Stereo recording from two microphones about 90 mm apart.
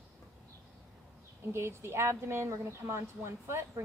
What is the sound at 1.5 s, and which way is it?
A woman's voice, 30° right (ahead or behind).